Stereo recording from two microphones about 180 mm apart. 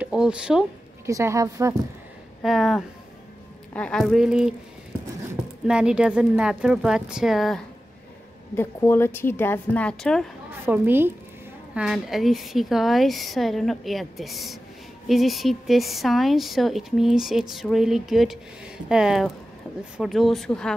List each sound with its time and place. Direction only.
0.0 s speech: 5° right (ahead or behind)
1.0 s a woman's voice: 15° right (ahead or behind)
2.4 s a woman's voice: centre (ahead or behind)
8.5 s a woman's voice: 15° left (ahead or behind)
10.6 s a woman's voice: 10° right (ahead or behind); by 20.7 s 5° left (ahead or behind)